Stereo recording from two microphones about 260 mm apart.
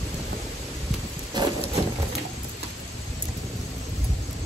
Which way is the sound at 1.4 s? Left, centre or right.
Centre.